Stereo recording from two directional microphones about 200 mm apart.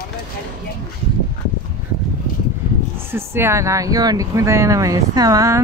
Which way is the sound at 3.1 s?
10° right (ahead or behind).